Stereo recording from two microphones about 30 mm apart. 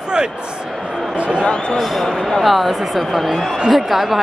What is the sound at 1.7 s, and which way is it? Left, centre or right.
A woman's voice, centre.